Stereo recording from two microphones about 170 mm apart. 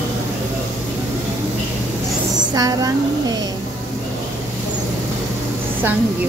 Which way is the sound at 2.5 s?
20° right (ahead or behind).